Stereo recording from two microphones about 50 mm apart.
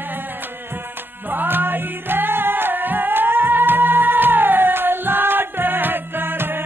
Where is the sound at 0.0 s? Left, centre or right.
Right.